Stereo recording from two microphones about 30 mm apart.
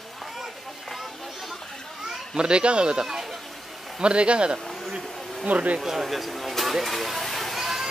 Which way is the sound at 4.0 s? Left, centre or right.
Right.